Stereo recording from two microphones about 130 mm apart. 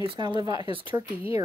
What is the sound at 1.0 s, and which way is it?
Speech, 20° right (ahead or behind).